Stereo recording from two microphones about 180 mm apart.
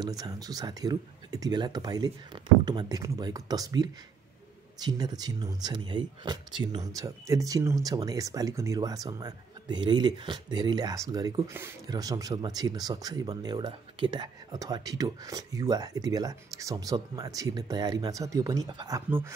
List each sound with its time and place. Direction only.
0.0 s speech: 20° right (ahead or behind)